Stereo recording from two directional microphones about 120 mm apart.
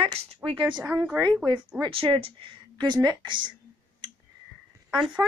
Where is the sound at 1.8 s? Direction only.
45° right (ahead or behind).